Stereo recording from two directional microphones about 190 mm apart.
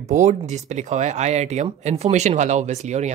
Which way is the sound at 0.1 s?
35° right (ahead or behind).